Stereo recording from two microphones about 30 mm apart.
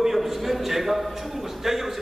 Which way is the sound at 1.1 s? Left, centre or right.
Centre.